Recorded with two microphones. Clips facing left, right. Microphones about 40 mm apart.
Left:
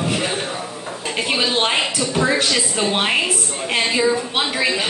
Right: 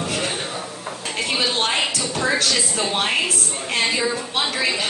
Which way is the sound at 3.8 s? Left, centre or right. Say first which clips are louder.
Left 4 dB; centre.